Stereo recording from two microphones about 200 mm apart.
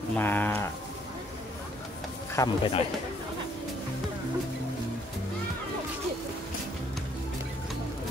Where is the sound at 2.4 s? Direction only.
15° left (ahead or behind).